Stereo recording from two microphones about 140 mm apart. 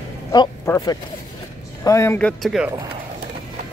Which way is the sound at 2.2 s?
10° left (ahead or behind).